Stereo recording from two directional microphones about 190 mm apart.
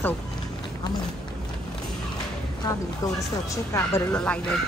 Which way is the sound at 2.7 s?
20° left (ahead or behind).